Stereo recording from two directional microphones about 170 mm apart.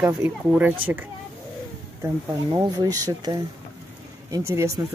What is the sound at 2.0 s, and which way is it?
Speech, 25° right (ahead or behind).